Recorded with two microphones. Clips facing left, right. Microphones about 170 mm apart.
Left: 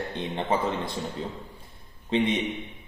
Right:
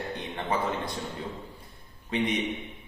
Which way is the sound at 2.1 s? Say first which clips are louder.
Left 4 dB; 25° left (ahead or behind).